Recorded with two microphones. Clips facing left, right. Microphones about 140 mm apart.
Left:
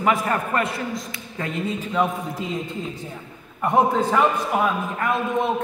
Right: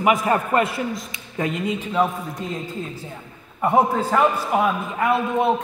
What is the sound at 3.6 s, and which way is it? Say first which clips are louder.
A man's voice: even; 5° right (ahead or behind).